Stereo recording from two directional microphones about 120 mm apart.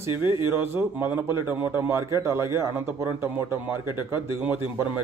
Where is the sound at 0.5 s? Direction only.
20° right (ahead or behind).